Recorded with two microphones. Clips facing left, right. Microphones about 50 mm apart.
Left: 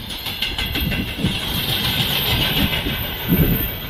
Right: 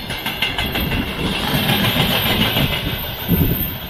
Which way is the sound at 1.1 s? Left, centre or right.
Right.